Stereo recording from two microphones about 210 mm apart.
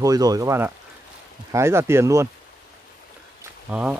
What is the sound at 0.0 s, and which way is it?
Speech, 15° right (ahead or behind).